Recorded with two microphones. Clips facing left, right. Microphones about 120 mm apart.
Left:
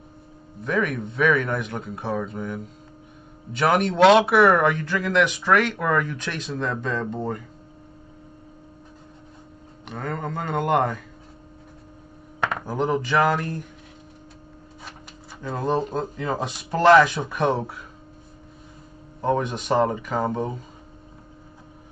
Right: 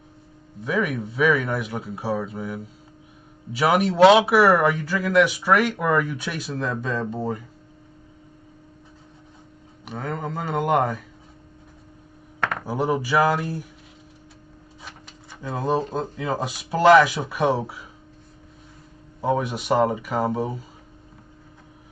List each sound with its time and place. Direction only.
0.7 s speech: 5° right (ahead or behind)
9.8 s speech: centre (ahead or behind)
12.5 s speech: 5° right (ahead or behind)
15.4 s speech: 5° right (ahead or behind)
19.2 s speech: 5° right (ahead or behind)